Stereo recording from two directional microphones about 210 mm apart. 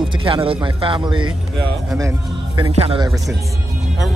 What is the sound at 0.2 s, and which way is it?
Speech, 25° right (ahead or behind).